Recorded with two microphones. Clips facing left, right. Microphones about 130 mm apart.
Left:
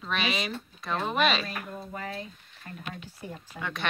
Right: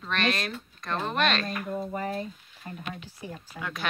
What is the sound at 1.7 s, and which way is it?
Speech, 15° right (ahead or behind).